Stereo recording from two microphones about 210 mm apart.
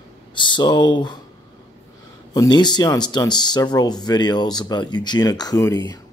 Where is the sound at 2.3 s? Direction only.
20° left (ahead or behind).